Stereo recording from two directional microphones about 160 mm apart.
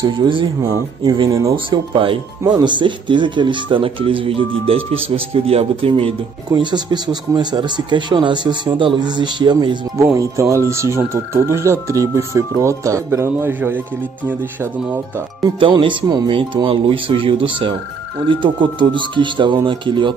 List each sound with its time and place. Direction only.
0.0 s speech: 30° right (ahead or behind); by 14.7 s 15° right (ahead or behind)
15.6 s speech: 30° right (ahead or behind)